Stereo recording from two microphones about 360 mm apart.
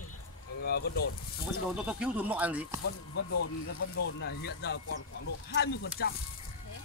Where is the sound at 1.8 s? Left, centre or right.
Centre.